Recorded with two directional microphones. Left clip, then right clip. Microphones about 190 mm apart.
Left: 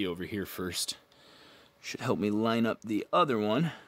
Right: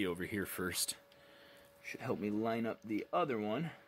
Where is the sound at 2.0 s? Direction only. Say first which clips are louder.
Left 8 dB; 50° left (ahead or behind).